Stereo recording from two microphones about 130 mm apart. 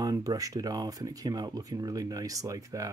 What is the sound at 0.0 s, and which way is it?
Speech, 30° right (ahead or behind).